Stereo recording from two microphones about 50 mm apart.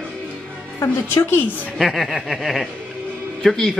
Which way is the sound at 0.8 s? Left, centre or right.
Left.